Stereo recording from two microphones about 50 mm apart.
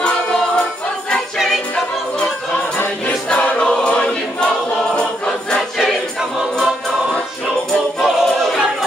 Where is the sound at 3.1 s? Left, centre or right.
Left.